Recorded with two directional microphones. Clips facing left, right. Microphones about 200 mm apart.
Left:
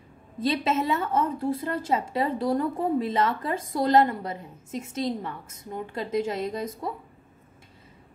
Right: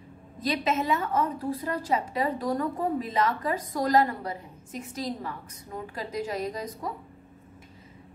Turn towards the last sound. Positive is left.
turn(degrees=25)  # may be behind; listen again after turning